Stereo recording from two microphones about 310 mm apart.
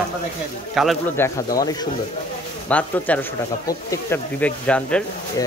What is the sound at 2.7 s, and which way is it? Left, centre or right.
Speech, centre.